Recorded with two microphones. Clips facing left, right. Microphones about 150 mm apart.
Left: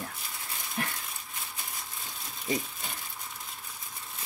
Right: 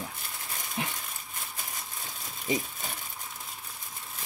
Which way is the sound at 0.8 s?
Centre (ahead or behind).